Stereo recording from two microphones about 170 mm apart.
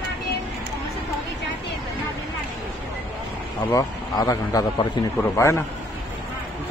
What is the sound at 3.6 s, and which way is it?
Speech, 20° left (ahead or behind).